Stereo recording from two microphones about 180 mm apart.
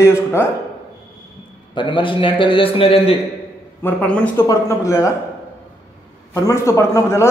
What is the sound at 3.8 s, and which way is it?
Speech, 5° left (ahead or behind).